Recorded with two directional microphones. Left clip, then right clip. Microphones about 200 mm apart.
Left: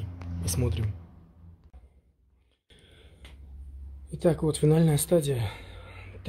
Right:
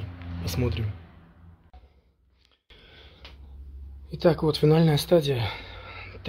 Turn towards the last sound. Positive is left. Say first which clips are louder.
# right 7 dB
turn(degrees=0)  # may be behind; listen again after turning